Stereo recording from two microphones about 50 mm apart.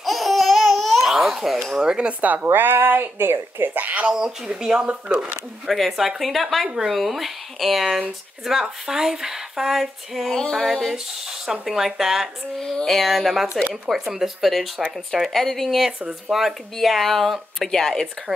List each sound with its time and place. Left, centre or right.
0.0 s babbling: centre
1.8 s speech: centre
2.2 s speech: right
3.8 s speech: right
5.7 s speech: centre
12.7 s speech: centre
16.3 s speech: centre